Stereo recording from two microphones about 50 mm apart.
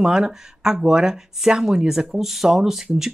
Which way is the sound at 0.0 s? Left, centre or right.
Centre.